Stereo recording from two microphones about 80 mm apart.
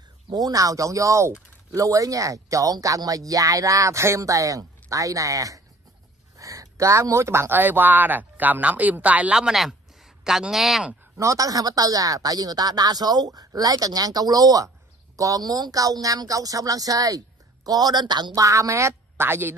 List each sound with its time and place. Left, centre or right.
0.3 s speech: right; by 10.9 s centre
11.1 s speech: right
18.4 s speech: right